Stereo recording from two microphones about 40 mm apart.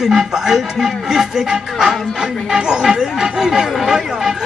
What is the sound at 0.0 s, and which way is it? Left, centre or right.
Speech, centre.